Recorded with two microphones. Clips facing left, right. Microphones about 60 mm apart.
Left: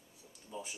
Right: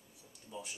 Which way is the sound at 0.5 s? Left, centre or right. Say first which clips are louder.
Left 2 dB; centre.